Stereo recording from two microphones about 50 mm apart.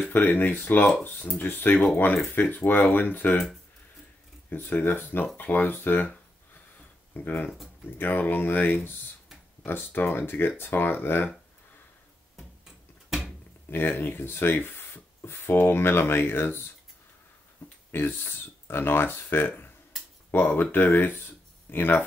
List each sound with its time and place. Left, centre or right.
0.1 s speech: left
4.5 s speech: left
7.2 s speech: left
13.7 s speech: left
17.6 s a sound: left
17.9 s speech: left